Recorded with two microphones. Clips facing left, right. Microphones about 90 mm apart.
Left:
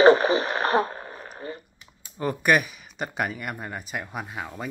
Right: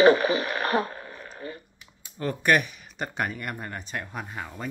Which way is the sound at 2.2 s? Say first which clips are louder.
Left 1 dB; 10° left (ahead or behind).